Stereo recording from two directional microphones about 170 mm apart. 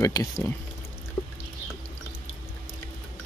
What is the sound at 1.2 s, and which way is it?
Pour, 10° left (ahead or behind).